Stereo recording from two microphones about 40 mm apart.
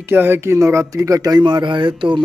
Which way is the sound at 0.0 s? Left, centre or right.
Right.